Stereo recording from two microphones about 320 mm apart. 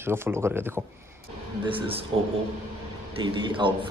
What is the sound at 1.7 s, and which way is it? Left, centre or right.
Speech, centre.